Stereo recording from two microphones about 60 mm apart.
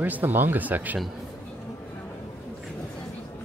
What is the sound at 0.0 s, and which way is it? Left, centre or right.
Speech, right.